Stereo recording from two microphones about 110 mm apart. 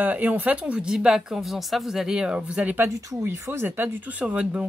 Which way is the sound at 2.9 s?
30° right (ahead or behind).